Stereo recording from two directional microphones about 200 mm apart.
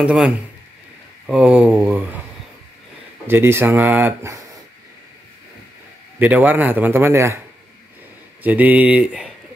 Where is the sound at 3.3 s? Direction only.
10° right (ahead or behind).